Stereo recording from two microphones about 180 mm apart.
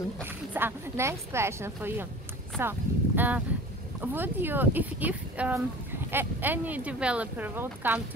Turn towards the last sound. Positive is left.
turn(degrees=-10)  # may be behind; listen again after turning